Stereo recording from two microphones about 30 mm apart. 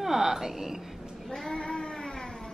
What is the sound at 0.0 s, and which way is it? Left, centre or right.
Speech, centre.